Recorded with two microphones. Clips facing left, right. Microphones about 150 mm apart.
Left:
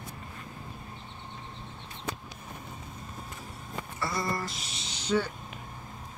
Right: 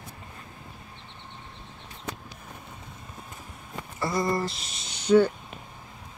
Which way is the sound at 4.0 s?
25° right (ahead or behind).